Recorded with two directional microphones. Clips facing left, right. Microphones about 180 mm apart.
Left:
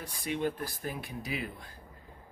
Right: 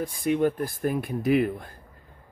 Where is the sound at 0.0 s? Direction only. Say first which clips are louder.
Right 9 dB; 50° right (ahead or behind).